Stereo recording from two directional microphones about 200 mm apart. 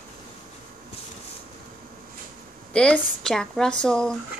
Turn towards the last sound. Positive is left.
turn(degrees=5)  # may be behind; listen again after turning